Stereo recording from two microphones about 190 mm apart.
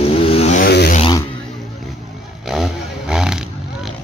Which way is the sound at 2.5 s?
Centre (ahead or behind).